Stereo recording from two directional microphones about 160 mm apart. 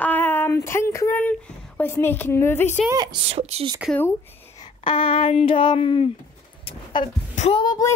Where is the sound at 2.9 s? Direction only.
25° right (ahead or behind).